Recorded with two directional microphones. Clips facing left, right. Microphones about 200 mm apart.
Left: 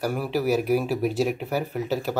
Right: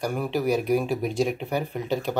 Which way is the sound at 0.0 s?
5° left (ahead or behind).